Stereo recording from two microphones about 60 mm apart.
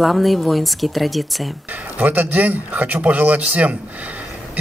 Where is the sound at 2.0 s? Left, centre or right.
Right.